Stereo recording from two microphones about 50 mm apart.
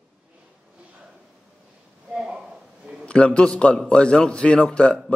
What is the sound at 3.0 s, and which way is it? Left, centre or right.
A man's voice, left.